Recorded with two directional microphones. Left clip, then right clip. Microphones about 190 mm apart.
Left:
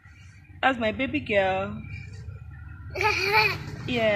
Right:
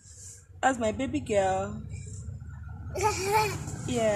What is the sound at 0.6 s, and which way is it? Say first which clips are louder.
A woman's voice: left 3 dB; 15° left (ahead or behind).